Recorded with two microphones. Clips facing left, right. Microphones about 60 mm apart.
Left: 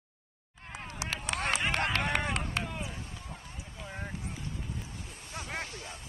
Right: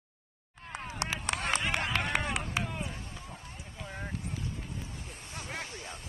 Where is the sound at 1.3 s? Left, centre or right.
Right.